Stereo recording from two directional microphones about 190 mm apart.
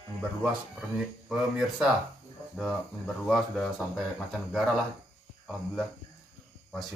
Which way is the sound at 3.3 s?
Centre (ahead or behind).